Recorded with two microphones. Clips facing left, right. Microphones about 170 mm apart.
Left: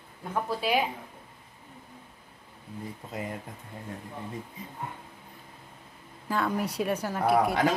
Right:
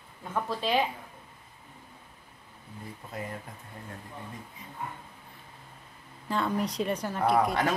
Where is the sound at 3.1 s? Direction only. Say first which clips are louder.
Left 2 dB; 20° left (ahead or behind).